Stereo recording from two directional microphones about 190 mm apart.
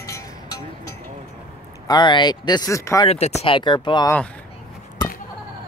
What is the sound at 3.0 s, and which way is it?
Speech, 35° left (ahead or behind).